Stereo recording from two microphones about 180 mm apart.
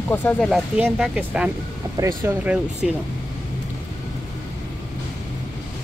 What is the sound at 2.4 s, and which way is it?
Speech, 5° right (ahead or behind).